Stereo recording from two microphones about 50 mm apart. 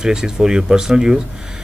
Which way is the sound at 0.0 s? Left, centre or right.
Centre.